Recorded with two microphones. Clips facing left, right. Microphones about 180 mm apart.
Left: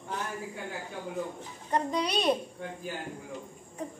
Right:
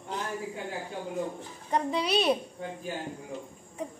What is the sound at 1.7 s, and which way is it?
Speech, 5° right (ahead or behind).